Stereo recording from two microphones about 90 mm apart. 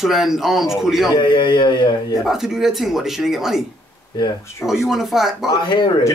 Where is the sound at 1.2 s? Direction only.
60° left (ahead or behind).